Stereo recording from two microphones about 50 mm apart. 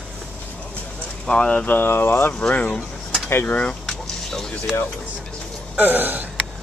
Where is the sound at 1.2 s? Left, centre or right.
Centre.